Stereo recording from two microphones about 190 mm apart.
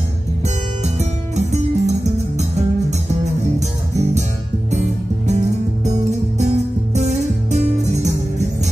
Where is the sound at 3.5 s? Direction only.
35° right (ahead or behind).